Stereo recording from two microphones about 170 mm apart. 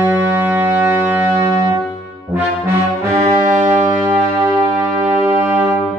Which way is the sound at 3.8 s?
15° right (ahead or behind).